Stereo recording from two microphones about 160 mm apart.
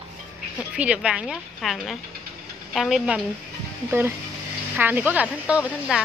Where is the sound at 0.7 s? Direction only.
5° right (ahead or behind).